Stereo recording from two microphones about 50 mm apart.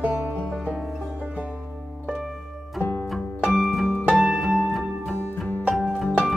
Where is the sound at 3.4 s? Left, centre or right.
Centre.